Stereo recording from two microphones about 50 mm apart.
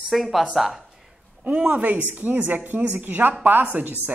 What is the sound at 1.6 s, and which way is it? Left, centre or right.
Speech, right.